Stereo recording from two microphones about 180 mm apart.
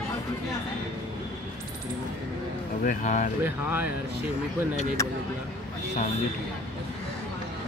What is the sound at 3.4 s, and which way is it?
Speech, 10° right (ahead or behind).